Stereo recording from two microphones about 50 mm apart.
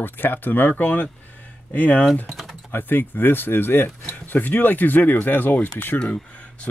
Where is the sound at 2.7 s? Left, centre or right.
Left.